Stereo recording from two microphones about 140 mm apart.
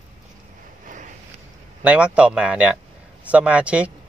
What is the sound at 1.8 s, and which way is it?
Speech, 10° right (ahead or behind).